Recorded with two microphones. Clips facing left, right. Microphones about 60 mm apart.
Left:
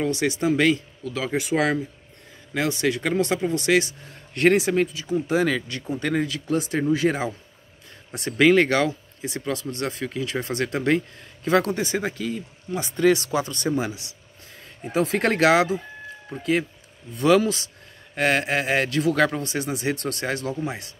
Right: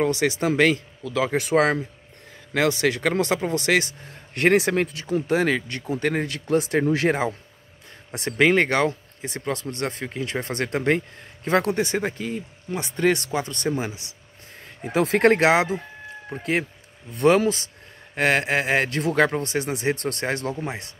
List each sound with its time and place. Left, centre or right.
0.0 s speech: right
1.5 s speech: right
2.5 s speech: right
8.4 s speech: right
13.7 s speech: right
14.9 s speech: right
15.2 s speech: right
17.3 s speech: right